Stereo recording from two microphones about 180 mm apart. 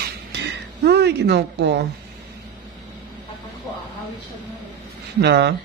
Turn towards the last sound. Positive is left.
turn(degrees=-70)  # may be behind; listen again after turning